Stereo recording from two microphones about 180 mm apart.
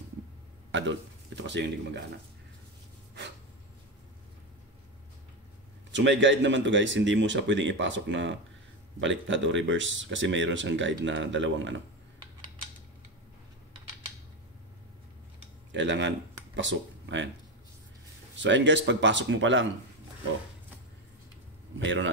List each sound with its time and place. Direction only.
0.7 s a man's voice: 90° right; by 2.0 s 70° right (ahead or behind)
5.9 s speech: 85° right
15.7 s speech: 85° right
18.4 s speech: 85° right
21.7 s speech: 90° right